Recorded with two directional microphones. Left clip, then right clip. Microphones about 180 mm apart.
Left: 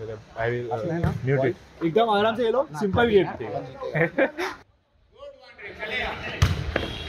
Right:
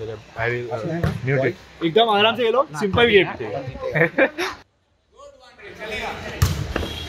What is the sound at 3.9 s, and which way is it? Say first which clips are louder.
Speech: right 5 dB; centre (ahead or behind).